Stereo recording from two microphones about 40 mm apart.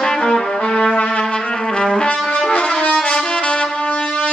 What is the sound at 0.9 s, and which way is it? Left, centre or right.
Music, left.